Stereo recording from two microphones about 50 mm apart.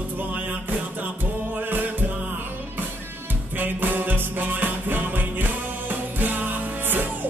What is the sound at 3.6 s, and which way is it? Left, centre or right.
Music, right.